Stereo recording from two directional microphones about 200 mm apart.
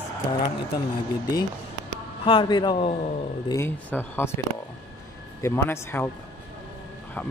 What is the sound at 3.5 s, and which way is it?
Speech, 10° left (ahead or behind).